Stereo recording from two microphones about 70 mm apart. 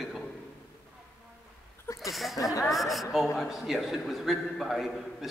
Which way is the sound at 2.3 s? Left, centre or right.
Left.